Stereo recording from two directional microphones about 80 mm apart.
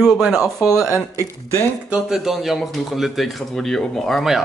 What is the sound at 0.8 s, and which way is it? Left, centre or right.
Speech, right.